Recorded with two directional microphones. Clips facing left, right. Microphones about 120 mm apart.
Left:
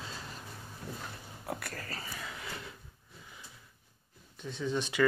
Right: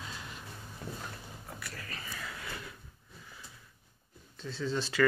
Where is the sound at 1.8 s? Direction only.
35° left (ahead or behind).